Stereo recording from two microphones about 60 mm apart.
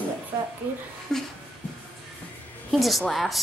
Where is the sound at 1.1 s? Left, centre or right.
Centre.